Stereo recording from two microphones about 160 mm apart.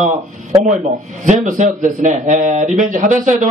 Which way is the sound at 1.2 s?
50° right (ahead or behind).